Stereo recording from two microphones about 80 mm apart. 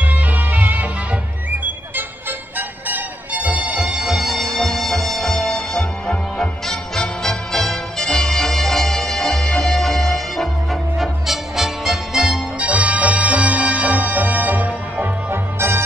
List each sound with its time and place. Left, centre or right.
0.0 s music: right
2.9 s music: centre